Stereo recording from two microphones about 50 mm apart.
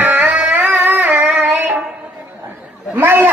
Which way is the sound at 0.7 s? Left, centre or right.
Right.